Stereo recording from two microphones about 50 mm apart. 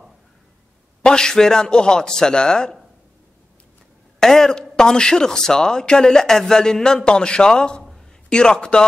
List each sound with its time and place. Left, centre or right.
1.0 s a man's voice: centre
4.2 s a man's voice: centre